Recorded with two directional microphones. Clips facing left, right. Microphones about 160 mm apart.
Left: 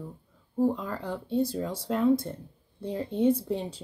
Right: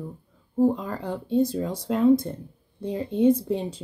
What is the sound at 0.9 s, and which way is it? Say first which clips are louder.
Speech: right 3 dB; 45° right (ahead or behind).